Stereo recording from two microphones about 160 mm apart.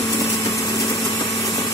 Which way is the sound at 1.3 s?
Centre (ahead or behind).